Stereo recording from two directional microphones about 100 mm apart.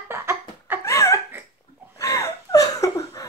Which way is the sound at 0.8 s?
30° left (ahead or behind).